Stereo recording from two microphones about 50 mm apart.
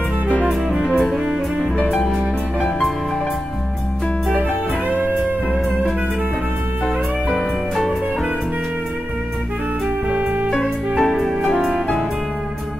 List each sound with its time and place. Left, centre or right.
4.4 s music: right
7.2 s music: centre
10.5 s music: centre